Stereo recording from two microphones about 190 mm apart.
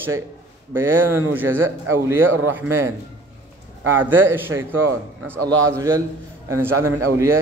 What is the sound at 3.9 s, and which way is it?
A man's voice, 10° right (ahead or behind).